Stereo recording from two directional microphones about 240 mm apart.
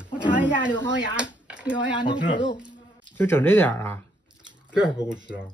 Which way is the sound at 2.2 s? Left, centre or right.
Left.